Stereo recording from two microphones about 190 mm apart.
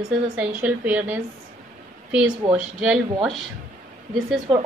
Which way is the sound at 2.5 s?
5° right (ahead or behind).